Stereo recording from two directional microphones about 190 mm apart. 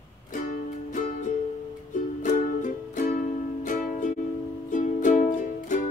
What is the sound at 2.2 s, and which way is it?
Music, 40° left (ahead or behind).